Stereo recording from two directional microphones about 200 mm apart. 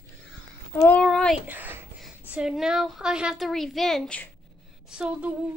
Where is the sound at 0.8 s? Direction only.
5° left (ahead or behind).